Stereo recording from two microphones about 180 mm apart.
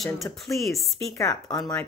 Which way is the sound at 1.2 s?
20° left (ahead or behind).